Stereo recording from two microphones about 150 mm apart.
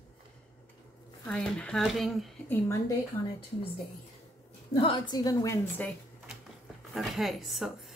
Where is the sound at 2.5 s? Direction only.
20° left (ahead or behind).